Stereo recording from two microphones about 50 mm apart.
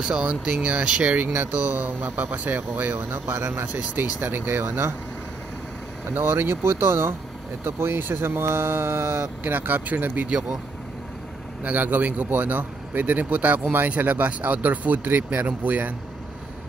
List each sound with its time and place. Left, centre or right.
0.0 s speech: centre
1.1 s a man's voice: right
3.3 s speech: right
6.1 s speech: right
11.6 s a man's voice: right